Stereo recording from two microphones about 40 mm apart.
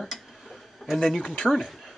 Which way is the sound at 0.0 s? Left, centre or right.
Centre.